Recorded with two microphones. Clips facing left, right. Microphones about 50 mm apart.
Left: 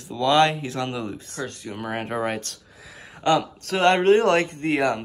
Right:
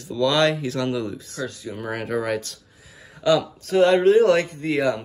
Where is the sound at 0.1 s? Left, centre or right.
Left.